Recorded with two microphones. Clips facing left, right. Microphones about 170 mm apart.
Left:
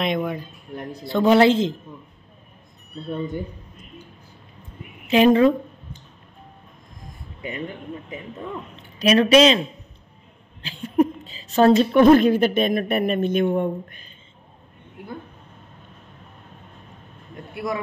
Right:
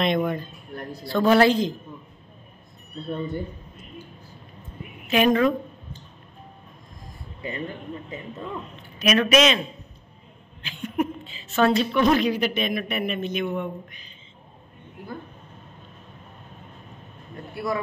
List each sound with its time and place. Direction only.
0.0 s speech: 5° left (ahead or behind)
0.7 s a man's voice: 20° left (ahead or behind)
3.1 s speech: 15° left (ahead or behind)
5.1 s a man's voice: 25° left (ahead or behind)
7.4 s speech: 20° left (ahead or behind)
9.0 s speech: 30° left (ahead or behind)
10.6 s a woman's voice: 30° left (ahead or behind); by 14.0 s 50° left (ahead or behind)